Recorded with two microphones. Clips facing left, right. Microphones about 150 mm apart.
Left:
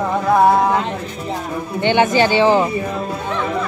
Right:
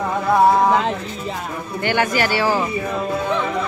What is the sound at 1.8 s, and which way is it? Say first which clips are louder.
Speech: left 5 dB; 20° left (ahead or behind).